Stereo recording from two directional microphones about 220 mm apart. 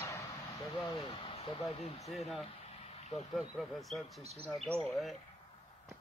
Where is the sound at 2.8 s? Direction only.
30° left (ahead or behind).